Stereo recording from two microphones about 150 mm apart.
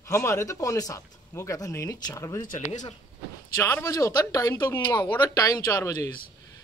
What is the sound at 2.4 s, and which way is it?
Speech, 55° left (ahead or behind).